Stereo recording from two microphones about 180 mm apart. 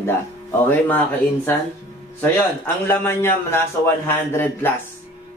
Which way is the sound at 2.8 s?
15° left (ahead or behind).